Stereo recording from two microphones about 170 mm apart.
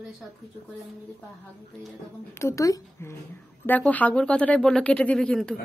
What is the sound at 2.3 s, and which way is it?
Speech, 15° left (ahead or behind).